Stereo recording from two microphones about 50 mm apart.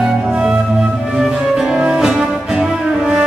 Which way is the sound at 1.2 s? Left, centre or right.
Centre.